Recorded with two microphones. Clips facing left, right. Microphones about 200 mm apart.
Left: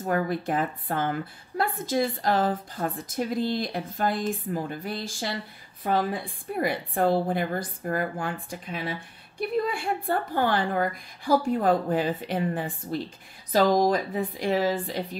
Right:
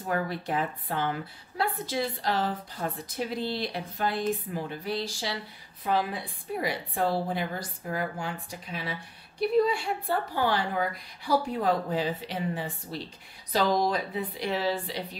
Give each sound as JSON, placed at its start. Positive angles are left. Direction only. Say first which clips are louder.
{"t": 0.0, "sound": "a woman's voice", "louder": "left 4 dB", "side_deg": 45}
{"t": 6.6, "sound": "a woman's voice", "louder": "left 5 dB", "side_deg": 50}